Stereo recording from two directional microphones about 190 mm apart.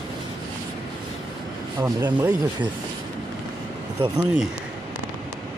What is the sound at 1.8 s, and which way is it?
Speech, 10° right (ahead or behind).